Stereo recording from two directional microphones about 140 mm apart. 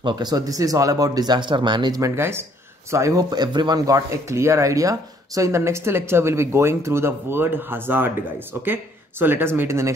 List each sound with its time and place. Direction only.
0.0 s speech: 30° right (ahead or behind); by 8.1 s 15° right (ahead or behind)
9.2 s speech: 15° right (ahead or behind)